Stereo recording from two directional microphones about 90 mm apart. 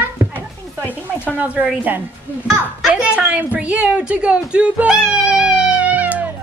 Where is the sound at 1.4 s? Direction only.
15° right (ahead or behind).